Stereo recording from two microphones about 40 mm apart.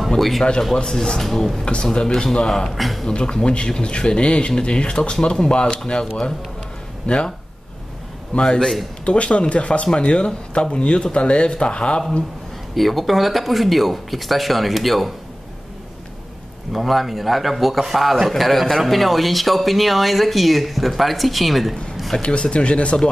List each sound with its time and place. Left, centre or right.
0.4 s speech: centre
1.6 s speech: centre
2.7 s a man's voice: centre
3.1 s speech: left
7.1 s speech: left
8.4 s speech: centre
9.0 s speech: left
12.7 s a man's voice: centre
16.7 s a man's voice: centre
22.2 s speech: left